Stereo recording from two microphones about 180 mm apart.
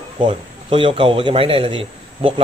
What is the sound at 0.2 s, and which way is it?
A man's voice, 30° right (ahead or behind).